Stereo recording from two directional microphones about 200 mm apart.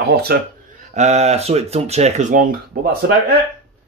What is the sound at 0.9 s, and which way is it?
Speech, 35° right (ahead or behind).